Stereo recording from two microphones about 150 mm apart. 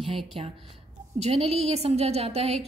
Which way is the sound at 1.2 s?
40° right (ahead or behind).